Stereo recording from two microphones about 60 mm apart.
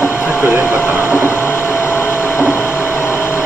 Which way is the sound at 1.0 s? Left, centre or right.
Left.